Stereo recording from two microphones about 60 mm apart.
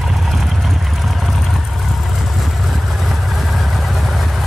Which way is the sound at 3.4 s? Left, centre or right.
Centre.